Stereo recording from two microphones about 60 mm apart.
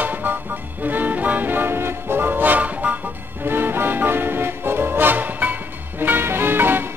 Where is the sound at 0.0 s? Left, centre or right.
Right.